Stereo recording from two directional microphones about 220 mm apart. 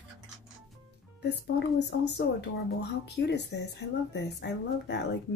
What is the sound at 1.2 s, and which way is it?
A woman's voice, 50° left (ahead or behind).